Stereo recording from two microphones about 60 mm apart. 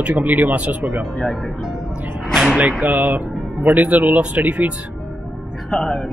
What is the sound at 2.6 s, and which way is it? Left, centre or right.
Speech, right.